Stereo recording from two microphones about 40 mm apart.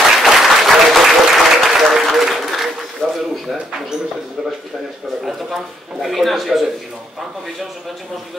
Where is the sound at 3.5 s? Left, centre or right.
Centre.